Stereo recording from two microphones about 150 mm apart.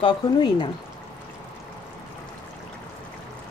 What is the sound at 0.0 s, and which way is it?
Speech, 35° left (ahead or behind).